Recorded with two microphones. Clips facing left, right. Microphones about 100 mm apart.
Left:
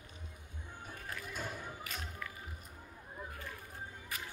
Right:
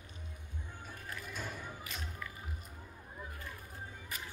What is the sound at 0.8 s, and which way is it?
Music, 15° left (ahead or behind).